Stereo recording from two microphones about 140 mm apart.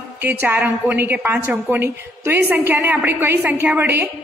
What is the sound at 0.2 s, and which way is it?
A woman's voice, 15° right (ahead or behind).